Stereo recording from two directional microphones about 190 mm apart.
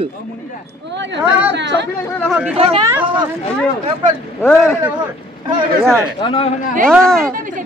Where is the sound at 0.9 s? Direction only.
70° right (ahead or behind).